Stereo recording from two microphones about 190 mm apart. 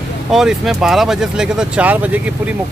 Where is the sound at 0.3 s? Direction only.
Centre (ahead or behind).